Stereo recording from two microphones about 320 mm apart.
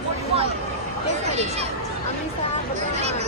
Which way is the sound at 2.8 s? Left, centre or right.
Centre.